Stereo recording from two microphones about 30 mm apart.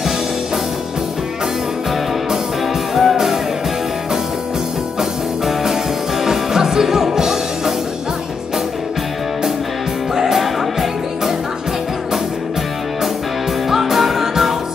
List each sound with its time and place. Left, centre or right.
2.9 s music: centre
6.2 s music: centre
10.1 s music: centre
13.7 s music: centre